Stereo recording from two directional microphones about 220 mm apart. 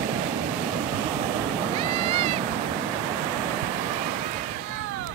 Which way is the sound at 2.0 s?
25° right (ahead or behind).